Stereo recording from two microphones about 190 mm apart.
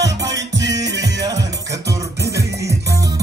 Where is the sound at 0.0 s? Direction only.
65° right (ahead or behind).